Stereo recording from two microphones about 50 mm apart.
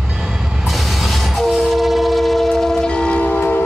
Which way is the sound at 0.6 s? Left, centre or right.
Centre.